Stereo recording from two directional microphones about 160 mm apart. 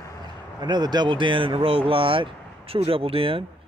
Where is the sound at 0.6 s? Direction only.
25° right (ahead or behind).